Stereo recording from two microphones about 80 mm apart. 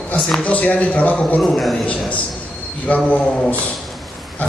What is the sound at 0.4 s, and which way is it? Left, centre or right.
Speech, centre.